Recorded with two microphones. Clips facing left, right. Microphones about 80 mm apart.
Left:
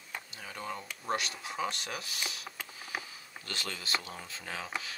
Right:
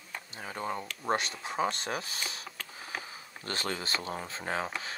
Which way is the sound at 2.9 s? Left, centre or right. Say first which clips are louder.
Even; centre.